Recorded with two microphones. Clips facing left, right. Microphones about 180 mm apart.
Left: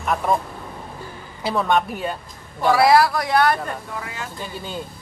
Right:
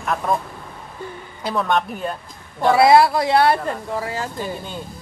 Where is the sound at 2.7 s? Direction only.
25° right (ahead or behind).